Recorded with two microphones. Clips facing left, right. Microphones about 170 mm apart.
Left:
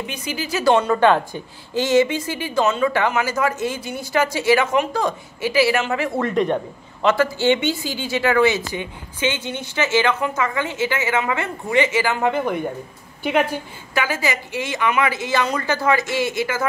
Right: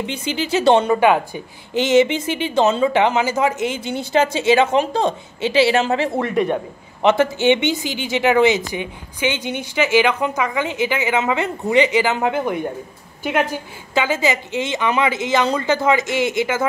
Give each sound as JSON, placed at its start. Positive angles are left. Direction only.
{"t": 0.0, "sound": "a woman's voice", "side_deg": -25}
{"t": 0.9, "sound": "a woman's voice", "side_deg": -10}
{"t": 6.2, "sound": "a man's voice", "side_deg": -10}
{"t": 13.2, "sound": "a woman's voice", "side_deg": 0}
{"t": 13.9, "sound": "a woman's voice", "side_deg": -20}